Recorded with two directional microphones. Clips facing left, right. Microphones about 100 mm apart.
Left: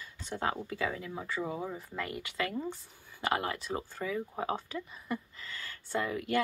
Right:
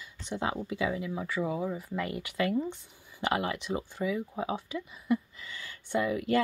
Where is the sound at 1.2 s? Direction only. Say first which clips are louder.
Right 3 dB; 5° right (ahead or behind).